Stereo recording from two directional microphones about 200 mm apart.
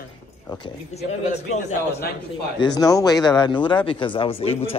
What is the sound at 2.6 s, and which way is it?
Speech, 20° left (ahead or behind).